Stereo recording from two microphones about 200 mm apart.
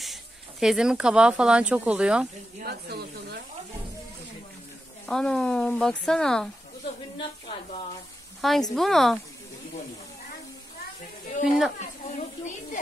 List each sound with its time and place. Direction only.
0.0 s speech: centre (ahead or behind)
2.6 s speech: 50° right (ahead or behind)
5.0 s speech: 5° left (ahead or behind)
7.2 s a woman's voice: 25° left (ahead or behind)
8.4 s speech: centre (ahead or behind)
11.2 s speech: 35° left (ahead or behind)
11.8 s a sound: 35° left (ahead or behind)